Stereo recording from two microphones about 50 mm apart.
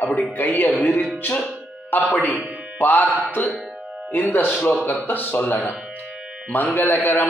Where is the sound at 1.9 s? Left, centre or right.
Left.